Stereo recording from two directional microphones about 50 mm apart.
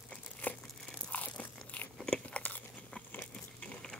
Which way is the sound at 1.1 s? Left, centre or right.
Left.